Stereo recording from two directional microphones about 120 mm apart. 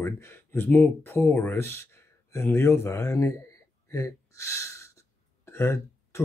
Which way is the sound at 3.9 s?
25° left (ahead or behind).